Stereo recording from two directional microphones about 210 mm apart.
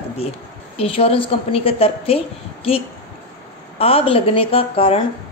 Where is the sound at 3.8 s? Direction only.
25° left (ahead or behind).